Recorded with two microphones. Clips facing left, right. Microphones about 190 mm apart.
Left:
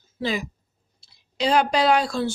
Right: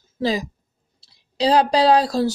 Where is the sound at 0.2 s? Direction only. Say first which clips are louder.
Right 4 dB; 35° right (ahead or behind).